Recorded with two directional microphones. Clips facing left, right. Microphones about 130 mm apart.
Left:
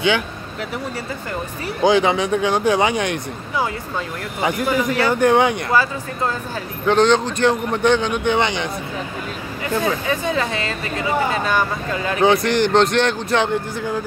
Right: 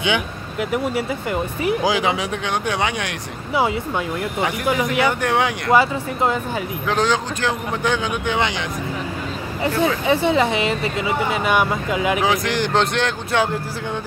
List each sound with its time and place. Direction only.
0.0 s a man's voice: 15° right (ahead or behind)
4.6 s speech: 15° right (ahead or behind)
5.2 s a man's voice: centre (ahead or behind)
5.7 s speech: 20° right (ahead or behind)
6.9 s a man's voice: 5° right (ahead or behind)
9.6 s speech: 20° right (ahead or behind); by 14.0 s centre (ahead or behind)